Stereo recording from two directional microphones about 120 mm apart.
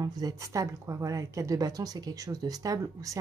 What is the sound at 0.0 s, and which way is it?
Speech, 30° right (ahead or behind).